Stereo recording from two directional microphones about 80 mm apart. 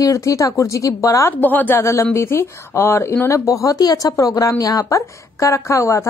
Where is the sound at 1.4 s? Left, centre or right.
Left.